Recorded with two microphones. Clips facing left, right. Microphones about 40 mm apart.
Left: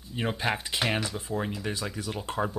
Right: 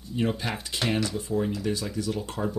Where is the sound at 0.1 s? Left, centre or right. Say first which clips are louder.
Right 1 dB; left.